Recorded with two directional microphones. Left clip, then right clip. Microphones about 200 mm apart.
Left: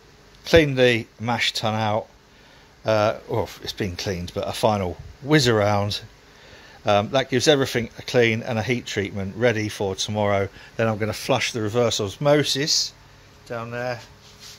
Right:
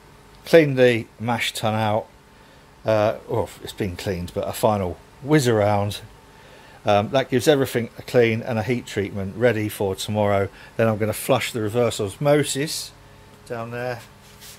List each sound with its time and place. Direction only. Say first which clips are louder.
0.4 s speech: right 2 dB; centre (ahead or behind); by 13.9 s 20° left (ahead or behind)